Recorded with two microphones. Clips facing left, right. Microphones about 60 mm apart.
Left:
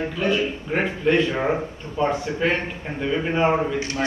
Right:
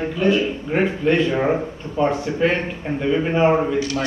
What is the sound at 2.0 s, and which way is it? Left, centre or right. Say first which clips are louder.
Speech: right 3 dB; centre.